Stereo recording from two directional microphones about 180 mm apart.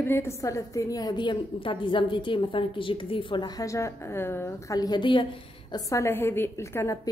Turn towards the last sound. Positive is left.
turn(degrees=15)  # may be behind; listen again after turning